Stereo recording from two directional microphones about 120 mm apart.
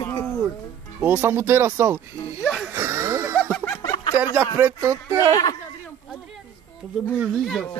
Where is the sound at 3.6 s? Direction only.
20° left (ahead or behind).